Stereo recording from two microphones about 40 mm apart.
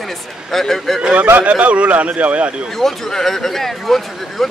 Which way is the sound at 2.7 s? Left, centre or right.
Centre.